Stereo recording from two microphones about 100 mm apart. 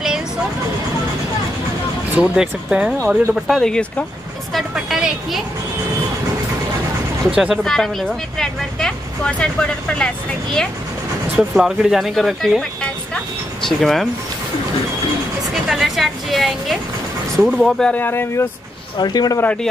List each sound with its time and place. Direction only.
2.1 s a woman's voice: 10° right (ahead or behind)
4.6 s a sound: 5° right (ahead or behind)
7.2 s speech: 10° right (ahead or behind)
7.6 s a woman's voice: 5° left (ahead or behind)
11.3 s a woman's voice: 5° right (ahead or behind)
15.7 s a woman's voice: centre (ahead or behind)
17.9 s speech: 20° left (ahead or behind)
18.9 s speech: 45° left (ahead or behind)
19.4 s a woman's voice: 10° left (ahead or behind)